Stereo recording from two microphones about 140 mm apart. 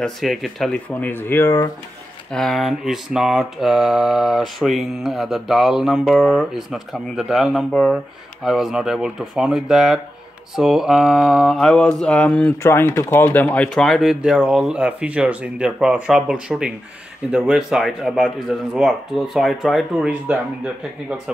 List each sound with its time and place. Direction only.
0.0 s speech: centre (ahead or behind); by 1.7 s 20° left (ahead or behind)
2.3 s mantra: centre (ahead or behind)
12.6 s mantra: 20° left (ahead or behind); by 20.3 s 5° right (ahead or behind)